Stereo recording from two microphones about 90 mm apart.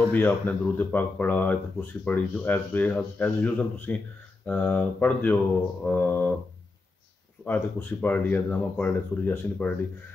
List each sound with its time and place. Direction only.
0.1 s speech: 20° left (ahead or behind)
7.4 s speech: 20° left (ahead or behind)